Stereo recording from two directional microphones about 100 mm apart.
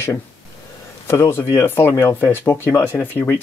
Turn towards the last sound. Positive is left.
turn(degrees=20)  # may be behind; listen again after turning